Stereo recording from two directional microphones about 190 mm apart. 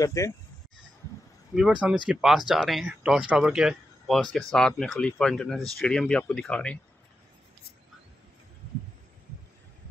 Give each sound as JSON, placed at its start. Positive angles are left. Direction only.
{"t": 0.0, "sound": "speech", "side_deg": 15}
{"t": 1.5, "sound": "speech", "side_deg": -5}